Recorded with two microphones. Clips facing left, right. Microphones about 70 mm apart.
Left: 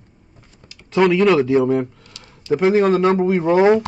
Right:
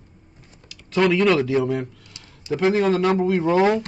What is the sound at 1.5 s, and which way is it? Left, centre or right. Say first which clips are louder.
Speech: left 5 dB; left.